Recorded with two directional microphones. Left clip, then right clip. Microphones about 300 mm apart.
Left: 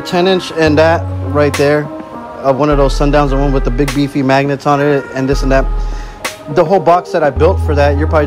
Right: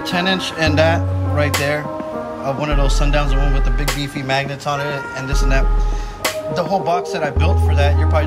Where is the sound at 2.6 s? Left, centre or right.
Centre.